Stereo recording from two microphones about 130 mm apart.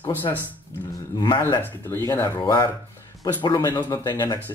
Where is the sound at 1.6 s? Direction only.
15° left (ahead or behind).